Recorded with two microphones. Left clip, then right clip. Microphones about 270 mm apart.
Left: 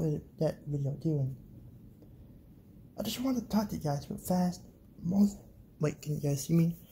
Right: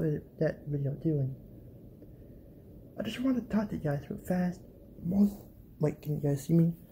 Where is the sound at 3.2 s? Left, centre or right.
Centre.